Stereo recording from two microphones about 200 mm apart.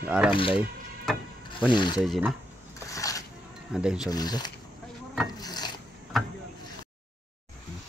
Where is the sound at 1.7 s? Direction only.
25° left (ahead or behind).